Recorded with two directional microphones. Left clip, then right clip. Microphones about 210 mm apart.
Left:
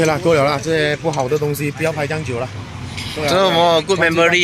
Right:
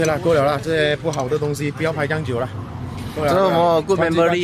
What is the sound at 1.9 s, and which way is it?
Speech, 10° left (ahead or behind).